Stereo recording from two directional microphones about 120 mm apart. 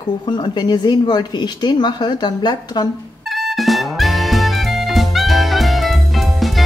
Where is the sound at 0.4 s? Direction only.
40° left (ahead or behind).